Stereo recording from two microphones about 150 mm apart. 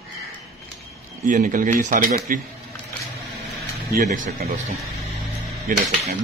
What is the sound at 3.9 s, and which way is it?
Speech, 60° right (ahead or behind).